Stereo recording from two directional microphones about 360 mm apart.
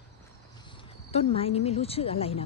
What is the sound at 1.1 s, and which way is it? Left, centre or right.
A woman's voice, centre.